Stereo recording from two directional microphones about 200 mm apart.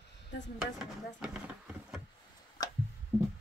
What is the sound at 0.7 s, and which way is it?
Speech, 5° right (ahead or behind).